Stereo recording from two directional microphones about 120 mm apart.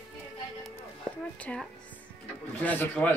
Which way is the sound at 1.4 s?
10° left (ahead or behind).